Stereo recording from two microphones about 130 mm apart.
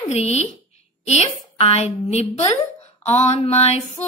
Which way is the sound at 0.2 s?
55° left (ahead or behind).